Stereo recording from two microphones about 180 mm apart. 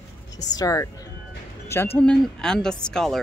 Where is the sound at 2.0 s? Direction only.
5° left (ahead or behind).